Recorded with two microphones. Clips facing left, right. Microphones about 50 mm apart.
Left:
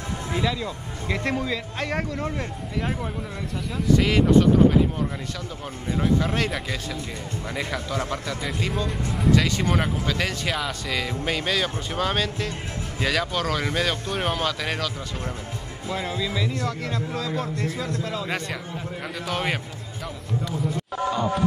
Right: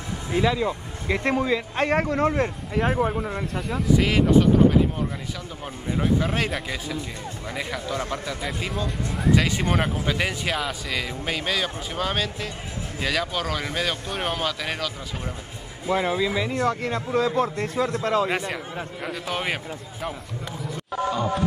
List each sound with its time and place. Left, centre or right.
0.3 s speech: centre
1.8 s speech: right
2.7 s speech: centre
5.9 s speech: centre
10.5 s speech: centre
15.9 s speech: right
18.2 s speech: centre